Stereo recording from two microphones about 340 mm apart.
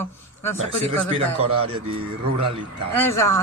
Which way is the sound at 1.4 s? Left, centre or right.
Right.